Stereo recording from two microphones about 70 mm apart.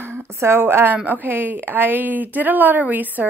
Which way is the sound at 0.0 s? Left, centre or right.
Right.